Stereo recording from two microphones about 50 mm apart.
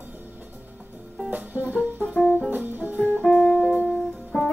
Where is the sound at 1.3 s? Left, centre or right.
Right.